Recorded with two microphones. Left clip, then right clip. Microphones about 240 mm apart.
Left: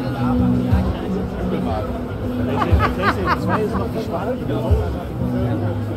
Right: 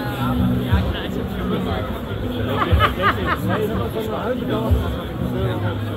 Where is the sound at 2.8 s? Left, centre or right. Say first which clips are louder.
Right 1 dB; left.